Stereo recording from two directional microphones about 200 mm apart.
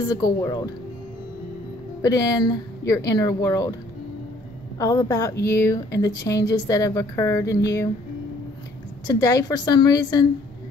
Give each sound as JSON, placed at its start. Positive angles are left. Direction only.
{"t": 0.1, "sound": "a woman's voice", "side_deg": 20}
{"t": 2.0, "sound": "speech", "side_deg": 15}
{"t": 4.7, "sound": "speech", "side_deg": 15}
{"t": 9.0, "sound": "a woman's voice", "side_deg": 15}